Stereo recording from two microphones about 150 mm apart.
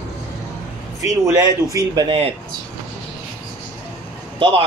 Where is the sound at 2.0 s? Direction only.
40° right (ahead or behind).